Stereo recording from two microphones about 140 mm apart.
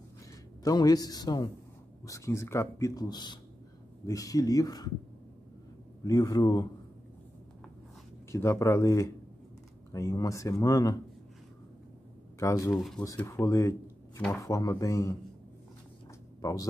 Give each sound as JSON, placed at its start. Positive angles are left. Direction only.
{"t": 0.7, "sound": "speech", "side_deg": 25}
{"t": 6.0, "sound": "speech", "side_deg": 25}
{"t": 8.3, "sound": "speech", "side_deg": 20}
{"t": 12.4, "sound": "speech", "side_deg": 20}
{"t": 16.3, "sound": "a sound", "side_deg": 25}